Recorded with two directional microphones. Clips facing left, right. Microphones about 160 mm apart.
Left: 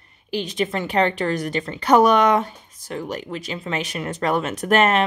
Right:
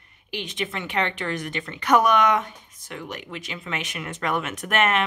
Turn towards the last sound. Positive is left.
turn(degrees=35)  # may be behind; listen again after turning